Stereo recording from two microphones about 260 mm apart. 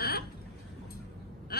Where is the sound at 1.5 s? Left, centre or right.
Left.